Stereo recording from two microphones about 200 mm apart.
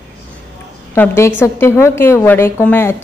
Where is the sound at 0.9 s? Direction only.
10° left (ahead or behind).